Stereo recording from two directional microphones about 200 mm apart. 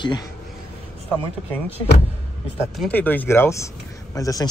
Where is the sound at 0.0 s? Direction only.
20° left (ahead or behind).